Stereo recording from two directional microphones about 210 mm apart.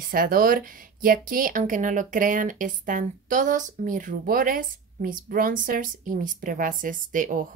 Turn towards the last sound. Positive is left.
turn(degrees=-40)  # may be behind; listen again after turning